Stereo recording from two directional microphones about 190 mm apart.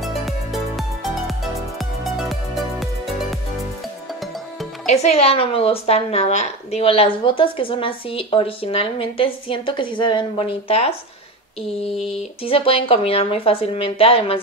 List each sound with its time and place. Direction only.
0.0 s music: centre (ahead or behind)
4.8 s a woman's voice: 35° left (ahead or behind)
12.4 s a woman's voice: 30° left (ahead or behind)